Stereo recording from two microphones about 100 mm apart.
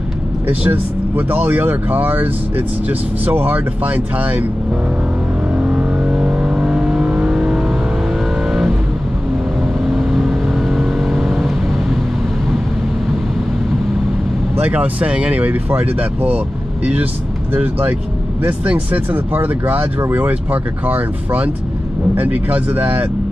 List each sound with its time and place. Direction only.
0.7 s speech: 15° right (ahead or behind)
5.5 s vehicle: 10° right (ahead or behind)
9.8 s vehicle: 5° right (ahead or behind)
14.6 s speech: 15° right (ahead or behind)
18.4 s speech: 15° right (ahead or behind)